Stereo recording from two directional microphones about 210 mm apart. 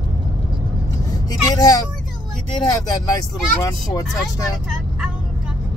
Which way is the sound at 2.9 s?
15° left (ahead or behind).